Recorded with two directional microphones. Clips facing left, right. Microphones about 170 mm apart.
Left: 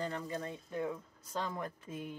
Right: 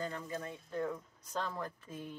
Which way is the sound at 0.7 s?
10° left (ahead or behind).